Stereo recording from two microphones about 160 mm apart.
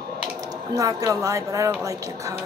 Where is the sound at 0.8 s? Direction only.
20° right (ahead or behind).